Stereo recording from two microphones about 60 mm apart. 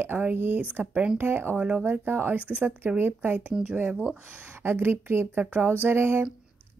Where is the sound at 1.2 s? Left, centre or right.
Right.